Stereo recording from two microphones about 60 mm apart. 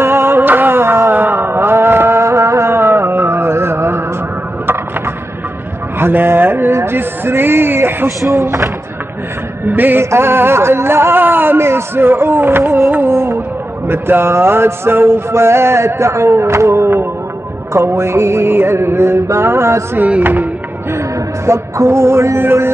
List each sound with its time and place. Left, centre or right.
0.0 s music: right
0.4 s music: right
1.1 s mantra: right
5.9 s a man's voice: right
6.7 s music: right
8.3 s music: right
9.7 s music: right
20.0 s music: right
21.5 s music: right